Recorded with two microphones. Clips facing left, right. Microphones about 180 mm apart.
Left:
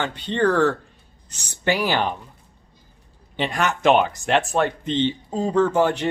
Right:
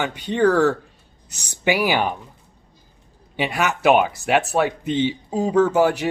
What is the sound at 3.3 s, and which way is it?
Speech, 10° right (ahead or behind).